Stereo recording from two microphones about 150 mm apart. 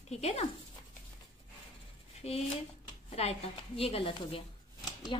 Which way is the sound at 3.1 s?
45° left (ahead or behind).